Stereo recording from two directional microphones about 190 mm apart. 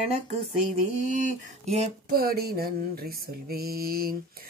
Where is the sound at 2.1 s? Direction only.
50° right (ahead or behind).